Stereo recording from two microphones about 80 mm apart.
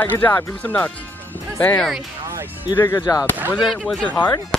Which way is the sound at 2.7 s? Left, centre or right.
Left.